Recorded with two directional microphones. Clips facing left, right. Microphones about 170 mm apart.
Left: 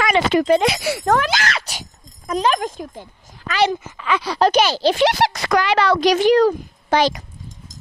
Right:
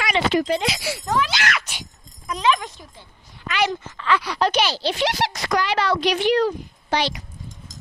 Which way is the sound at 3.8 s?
15° left (ahead or behind).